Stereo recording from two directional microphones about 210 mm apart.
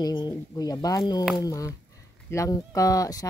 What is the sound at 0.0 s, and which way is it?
Speech, 20° left (ahead or behind).